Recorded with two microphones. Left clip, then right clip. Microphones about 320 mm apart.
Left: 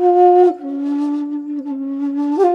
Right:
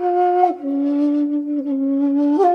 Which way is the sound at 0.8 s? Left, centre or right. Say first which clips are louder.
Right 1 dB; left.